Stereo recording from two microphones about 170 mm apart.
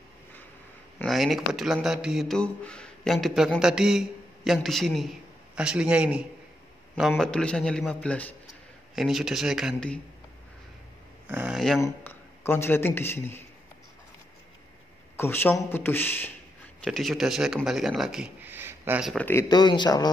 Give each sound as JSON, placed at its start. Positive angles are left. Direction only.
{"t": 1.0, "sound": "a man's voice", "side_deg": 0}
{"t": 8.9, "sound": "speech", "side_deg": 0}
{"t": 11.2, "sound": "speech", "side_deg": -10}
{"t": 11.8, "sound": "speech", "side_deg": 10}
{"t": 15.1, "sound": "speech", "side_deg": 15}
{"t": 16.8, "sound": "speech", "side_deg": 0}
{"t": 19.0, "sound": "speech", "side_deg": 10}
{"t": 19.5, "sound": "speech", "side_deg": 25}